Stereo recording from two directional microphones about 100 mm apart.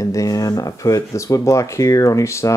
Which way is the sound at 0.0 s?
35° left (ahead or behind).